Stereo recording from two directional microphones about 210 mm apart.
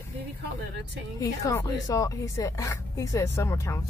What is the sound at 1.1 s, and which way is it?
Speech, 15° left (ahead or behind).